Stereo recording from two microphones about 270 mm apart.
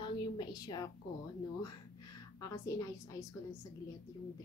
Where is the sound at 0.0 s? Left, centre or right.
Centre.